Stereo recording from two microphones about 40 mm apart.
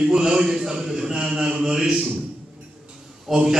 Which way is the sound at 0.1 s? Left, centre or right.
Centre.